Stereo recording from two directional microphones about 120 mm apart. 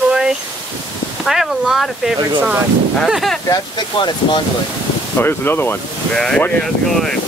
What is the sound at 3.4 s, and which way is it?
Speech, 35° left (ahead or behind).